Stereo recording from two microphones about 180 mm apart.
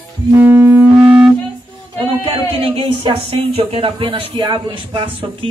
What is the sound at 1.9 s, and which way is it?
Speech, 30° right (ahead or behind).